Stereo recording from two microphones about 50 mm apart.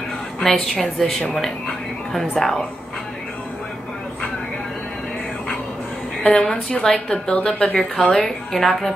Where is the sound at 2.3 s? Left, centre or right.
Centre.